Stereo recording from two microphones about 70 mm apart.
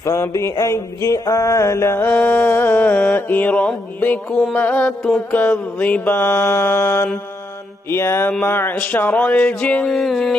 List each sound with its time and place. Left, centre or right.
0.0 s a sound: left
2.0 s music: left
5.3 s mantra: left
8.7 s music: left
9.9 s music: centre